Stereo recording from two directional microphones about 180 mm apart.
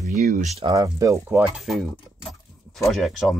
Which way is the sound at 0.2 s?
40° right (ahead or behind).